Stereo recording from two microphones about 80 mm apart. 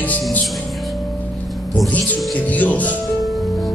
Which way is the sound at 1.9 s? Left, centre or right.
Centre.